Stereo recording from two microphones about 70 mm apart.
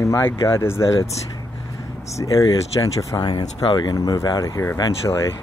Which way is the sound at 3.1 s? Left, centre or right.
Left.